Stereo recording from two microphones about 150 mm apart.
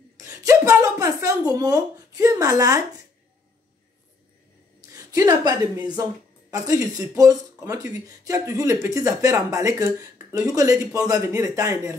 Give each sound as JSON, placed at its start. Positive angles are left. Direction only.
{"t": 0.2, "sound": "speech", "side_deg": -20}
{"t": 4.9, "sound": "a woman's voice", "side_deg": -25}